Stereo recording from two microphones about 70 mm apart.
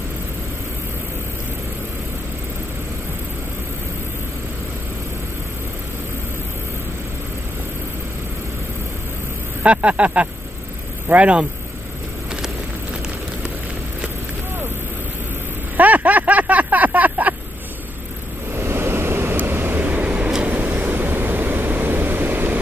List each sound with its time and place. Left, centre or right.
9.6 s speech: centre
15.8 s a sound: right
18.5 s waves: right
20.4 s vehicle: right